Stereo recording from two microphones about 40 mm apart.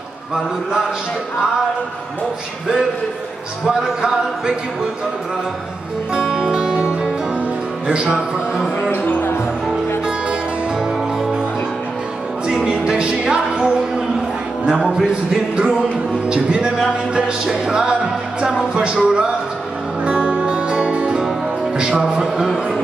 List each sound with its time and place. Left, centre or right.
3.6 s music: centre
6.1 s music: centre
12.6 s music: right
21.7 s speech: right